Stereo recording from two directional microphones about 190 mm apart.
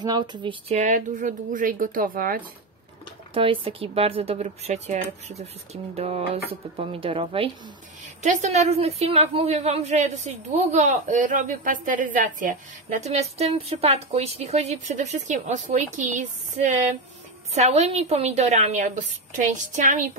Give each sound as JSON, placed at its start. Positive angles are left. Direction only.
{"t": 0.0, "sound": "a sound", "side_deg": -20}
{"t": 0.7, "sound": "speech", "side_deg": -40}
{"t": 3.3, "sound": "a woman's voice", "side_deg": -30}
{"t": 6.8, "sound": "a sound", "side_deg": -30}
{"t": 8.2, "sound": "a woman's voice", "side_deg": -40}
{"t": 13.0, "sound": "a woman's voice", "side_deg": -35}